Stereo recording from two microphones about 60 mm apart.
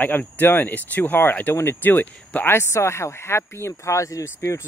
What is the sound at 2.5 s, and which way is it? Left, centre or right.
Speech, left.